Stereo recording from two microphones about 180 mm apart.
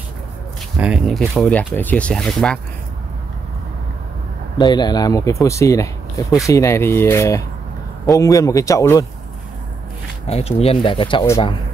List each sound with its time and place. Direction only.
0.7 s speech: 5° right (ahead or behind)
4.6 s speech: 25° left (ahead or behind)
10.2 s speech: 35° left (ahead or behind)